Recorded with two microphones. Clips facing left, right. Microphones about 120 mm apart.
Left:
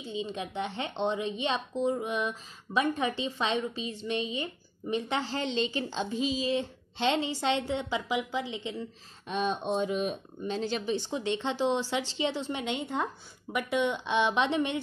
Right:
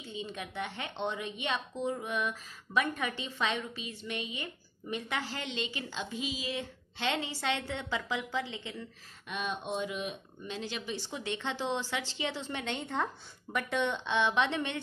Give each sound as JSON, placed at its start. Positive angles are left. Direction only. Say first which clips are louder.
{"t": 0.0, "sound": "speech", "louder": "left 6 dB", "side_deg": 20}
{"t": 9.3, "sound": "speech", "louder": "left 6 dB", "side_deg": 35}
{"t": 11.0, "sound": "a woman's voice", "louder": "left 6 dB", "side_deg": 25}